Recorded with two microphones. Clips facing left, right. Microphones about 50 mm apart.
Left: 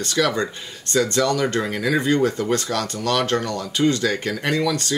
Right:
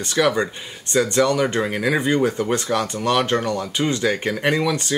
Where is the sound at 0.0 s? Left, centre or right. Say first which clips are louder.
Right 2 dB; centre.